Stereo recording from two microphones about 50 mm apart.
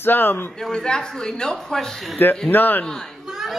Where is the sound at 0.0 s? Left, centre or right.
Left.